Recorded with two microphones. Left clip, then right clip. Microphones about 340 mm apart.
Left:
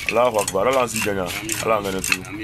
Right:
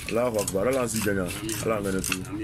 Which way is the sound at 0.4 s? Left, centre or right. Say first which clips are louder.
Left 6 dB; left.